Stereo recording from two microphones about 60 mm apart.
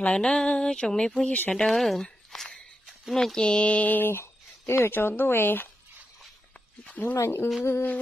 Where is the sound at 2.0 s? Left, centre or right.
Centre.